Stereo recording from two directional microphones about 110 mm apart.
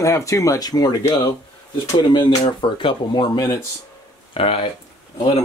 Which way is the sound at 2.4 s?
50° left (ahead or behind).